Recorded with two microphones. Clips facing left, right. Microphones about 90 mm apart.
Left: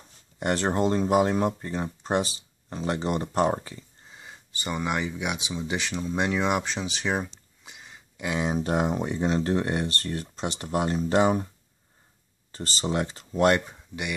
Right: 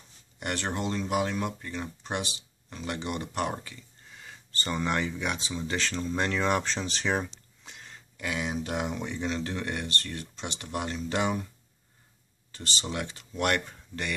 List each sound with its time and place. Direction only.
0.4 s speech: 35° left (ahead or behind); by 8.0 s 5° left (ahead or behind)
8.2 s speech: 30° left (ahead or behind)
12.5 s speech: 35° left (ahead or behind)
13.7 s speech: 10° left (ahead or behind)